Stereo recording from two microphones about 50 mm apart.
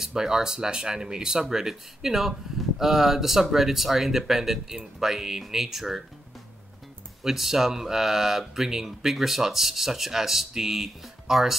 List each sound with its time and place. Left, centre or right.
0.0 s speech: centre
7.2 s speech: centre